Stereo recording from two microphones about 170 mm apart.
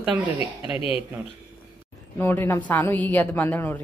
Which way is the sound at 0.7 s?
35° left (ahead or behind).